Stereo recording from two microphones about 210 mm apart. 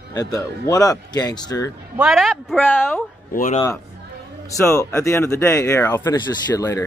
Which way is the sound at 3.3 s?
35° left (ahead or behind).